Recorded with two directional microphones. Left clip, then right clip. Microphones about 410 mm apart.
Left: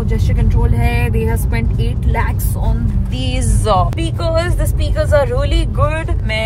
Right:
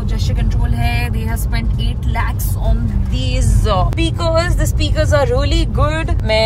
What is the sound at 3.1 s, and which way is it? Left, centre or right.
Speech, centre.